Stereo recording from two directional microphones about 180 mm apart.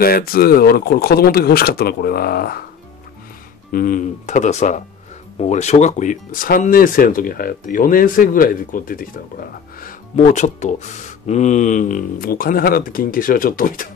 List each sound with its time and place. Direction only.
0.0 s speech: 55° left (ahead or behind)
3.7 s speech: 50° left (ahead or behind)